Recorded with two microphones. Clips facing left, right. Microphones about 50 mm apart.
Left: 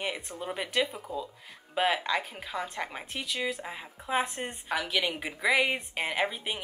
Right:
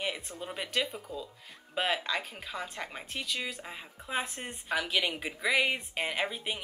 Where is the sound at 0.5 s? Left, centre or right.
Centre.